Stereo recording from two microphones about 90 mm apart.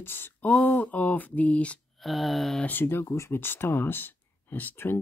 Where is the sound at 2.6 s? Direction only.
25° left (ahead or behind).